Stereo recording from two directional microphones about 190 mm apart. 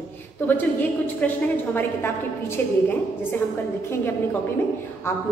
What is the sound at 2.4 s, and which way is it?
A woman's voice, 10° left (ahead or behind).